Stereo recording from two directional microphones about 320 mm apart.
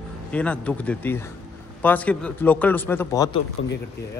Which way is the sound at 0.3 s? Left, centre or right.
Centre.